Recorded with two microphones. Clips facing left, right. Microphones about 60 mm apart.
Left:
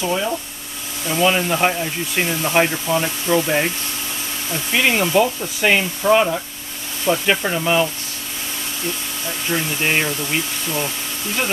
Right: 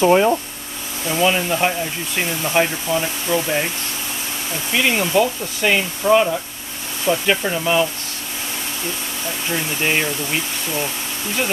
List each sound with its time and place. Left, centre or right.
0.0 s speech: right
1.0 s speech: centre
4.7 s speech: centre
9.5 s speech: centre